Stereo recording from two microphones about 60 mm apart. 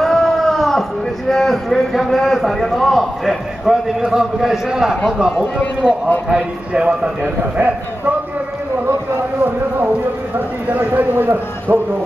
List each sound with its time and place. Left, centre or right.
0.0 s a sound: centre
1.3 s a man's voice: centre
5.6 s speech: left
6.2 s a man's voice: centre
7.5 s a man's voice: right
10.7 s a man's voice: right